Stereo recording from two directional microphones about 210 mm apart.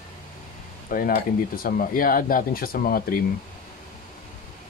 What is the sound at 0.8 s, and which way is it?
Speech, 45° left (ahead or behind).